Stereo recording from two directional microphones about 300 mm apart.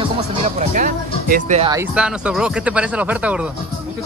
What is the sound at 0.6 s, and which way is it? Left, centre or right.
Speech, right.